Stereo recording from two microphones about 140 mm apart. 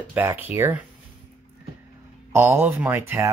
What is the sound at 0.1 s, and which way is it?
Speech, 15° right (ahead or behind).